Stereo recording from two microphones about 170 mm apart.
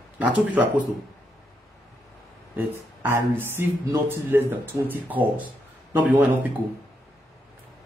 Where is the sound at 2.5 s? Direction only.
10° right (ahead or behind).